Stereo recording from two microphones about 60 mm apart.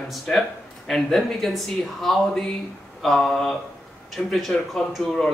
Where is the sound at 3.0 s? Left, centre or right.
Centre.